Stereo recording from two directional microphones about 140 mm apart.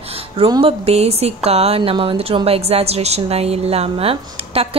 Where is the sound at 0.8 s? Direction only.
45° right (ahead or behind).